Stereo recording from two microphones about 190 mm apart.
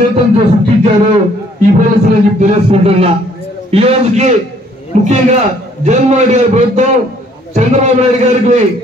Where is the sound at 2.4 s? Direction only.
30° right (ahead or behind).